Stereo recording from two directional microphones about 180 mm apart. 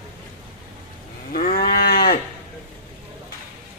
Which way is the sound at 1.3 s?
50° left (ahead or behind).